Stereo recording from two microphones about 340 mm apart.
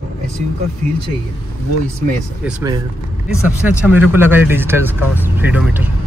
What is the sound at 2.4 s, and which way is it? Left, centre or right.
Speech, centre.